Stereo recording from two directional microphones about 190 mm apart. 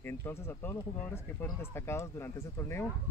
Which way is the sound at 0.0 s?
15° left (ahead or behind).